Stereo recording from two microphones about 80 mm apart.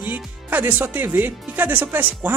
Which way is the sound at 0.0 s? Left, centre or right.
Right.